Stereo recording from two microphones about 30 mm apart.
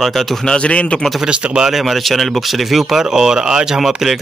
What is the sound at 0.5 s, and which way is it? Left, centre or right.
Speech, left.